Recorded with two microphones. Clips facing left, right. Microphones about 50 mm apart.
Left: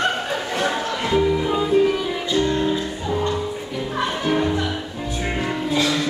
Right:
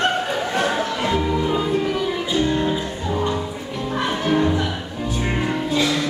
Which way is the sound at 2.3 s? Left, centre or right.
Centre.